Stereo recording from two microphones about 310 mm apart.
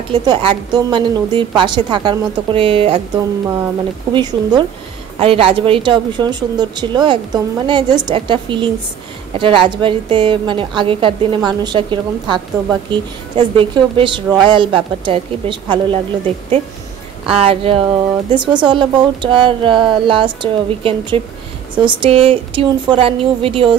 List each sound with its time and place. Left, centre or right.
0.1 s speech: centre
4.1 s speech: centre